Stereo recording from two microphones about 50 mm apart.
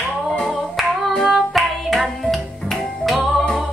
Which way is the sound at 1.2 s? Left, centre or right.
Centre.